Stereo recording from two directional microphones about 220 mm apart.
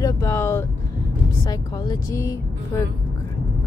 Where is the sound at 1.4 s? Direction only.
20° left (ahead or behind).